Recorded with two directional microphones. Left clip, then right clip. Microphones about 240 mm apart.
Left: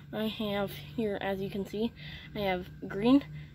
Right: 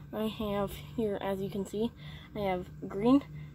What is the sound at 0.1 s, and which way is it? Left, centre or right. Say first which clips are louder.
A woman's voice: left 1 dB; centre.